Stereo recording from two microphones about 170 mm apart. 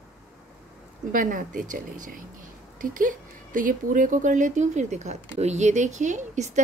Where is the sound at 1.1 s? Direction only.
50° right (ahead or behind).